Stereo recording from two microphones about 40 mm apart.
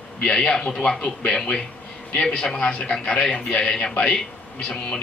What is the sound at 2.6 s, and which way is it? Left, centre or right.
Speech, left.